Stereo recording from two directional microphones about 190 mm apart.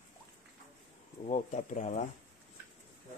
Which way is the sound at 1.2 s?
40° left (ahead or behind).